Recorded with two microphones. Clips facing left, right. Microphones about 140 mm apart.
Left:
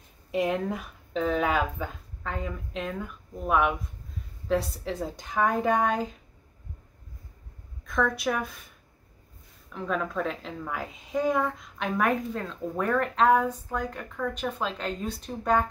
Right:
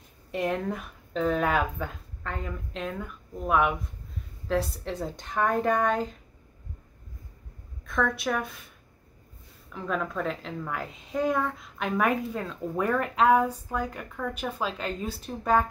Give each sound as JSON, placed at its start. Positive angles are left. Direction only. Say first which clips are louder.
{"t": 0.3, "sound": "a woman's voice", "louder": "left 2 dB", "side_deg": 5}
{"t": 7.8, "sound": "a woman's voice", "louder": "left 1 dB", "side_deg": 0}
{"t": 9.7, "sound": "a woman's voice", "louder": "left 1 dB", "side_deg": 0}